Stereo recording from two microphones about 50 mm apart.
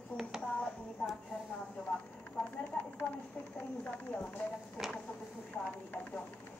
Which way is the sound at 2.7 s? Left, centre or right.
Centre.